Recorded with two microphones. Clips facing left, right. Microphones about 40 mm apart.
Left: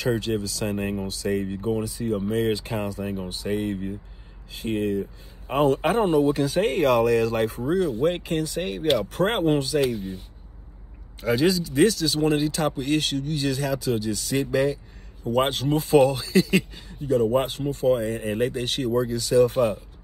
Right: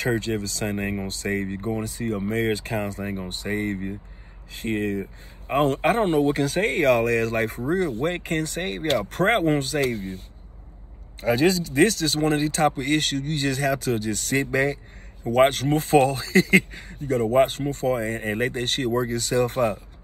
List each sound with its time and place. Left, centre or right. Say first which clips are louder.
0.0 s speech: even; right
11.1 s speech: right 1 dB; right